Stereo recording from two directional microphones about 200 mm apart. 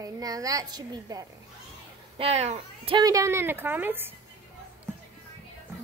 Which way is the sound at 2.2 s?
30° right (ahead or behind).